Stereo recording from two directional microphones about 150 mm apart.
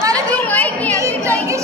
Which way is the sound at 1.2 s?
20° right (ahead or behind).